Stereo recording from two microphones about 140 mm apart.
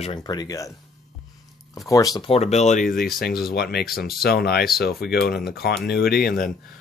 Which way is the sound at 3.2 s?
90° left.